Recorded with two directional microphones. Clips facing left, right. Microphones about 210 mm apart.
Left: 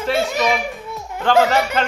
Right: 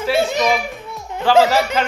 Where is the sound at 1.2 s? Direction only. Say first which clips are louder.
Right 2 dB; 5° right (ahead or behind).